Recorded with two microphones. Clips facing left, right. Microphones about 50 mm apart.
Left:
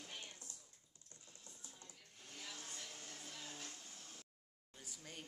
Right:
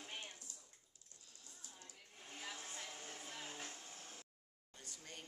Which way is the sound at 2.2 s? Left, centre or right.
Right.